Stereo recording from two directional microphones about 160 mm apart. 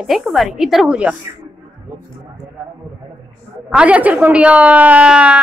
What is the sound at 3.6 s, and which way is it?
A woman's voice, 5° right (ahead or behind).